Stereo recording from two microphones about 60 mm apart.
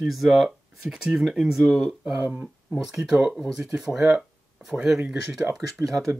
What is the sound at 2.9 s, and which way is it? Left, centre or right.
Speech, centre.